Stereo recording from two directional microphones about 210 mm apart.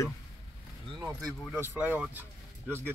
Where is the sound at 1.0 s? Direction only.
15° right (ahead or behind).